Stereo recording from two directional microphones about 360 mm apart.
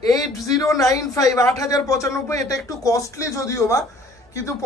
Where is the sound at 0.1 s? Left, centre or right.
Centre.